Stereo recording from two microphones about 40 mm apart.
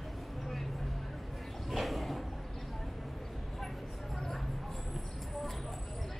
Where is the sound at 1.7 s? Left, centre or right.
Centre.